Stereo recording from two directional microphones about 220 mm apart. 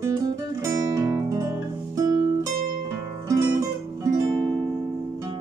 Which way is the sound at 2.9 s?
15° right (ahead or behind).